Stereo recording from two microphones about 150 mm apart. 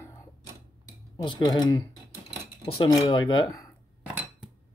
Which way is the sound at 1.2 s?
30° left (ahead or behind).